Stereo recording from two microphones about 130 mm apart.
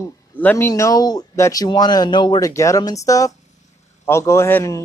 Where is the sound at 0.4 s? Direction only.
15° left (ahead or behind); by 2.5 s 35° left (ahead or behind).